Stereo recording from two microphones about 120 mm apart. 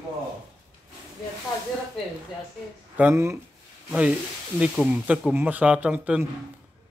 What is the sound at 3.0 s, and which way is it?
Speech, 20° right (ahead or behind).